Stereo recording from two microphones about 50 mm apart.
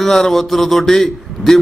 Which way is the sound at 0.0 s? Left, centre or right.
Centre.